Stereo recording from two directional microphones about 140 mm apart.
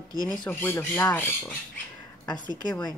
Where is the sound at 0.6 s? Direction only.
15° left (ahead or behind).